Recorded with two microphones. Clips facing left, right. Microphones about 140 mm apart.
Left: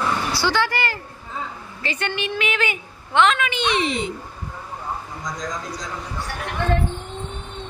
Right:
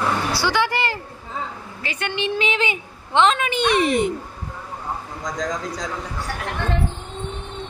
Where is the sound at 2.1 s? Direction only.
25° right (ahead or behind); by 4.1 s 55° right (ahead or behind).